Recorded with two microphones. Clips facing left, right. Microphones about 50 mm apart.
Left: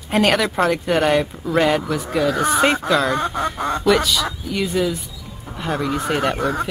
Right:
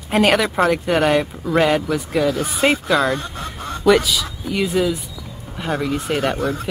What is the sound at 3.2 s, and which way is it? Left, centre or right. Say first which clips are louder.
Speech: left 8 dB; left.